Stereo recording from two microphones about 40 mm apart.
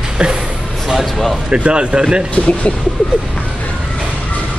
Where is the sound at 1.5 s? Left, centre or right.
Right.